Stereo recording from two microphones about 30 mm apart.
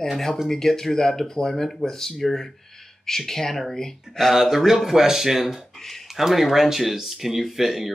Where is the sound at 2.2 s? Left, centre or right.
Centre.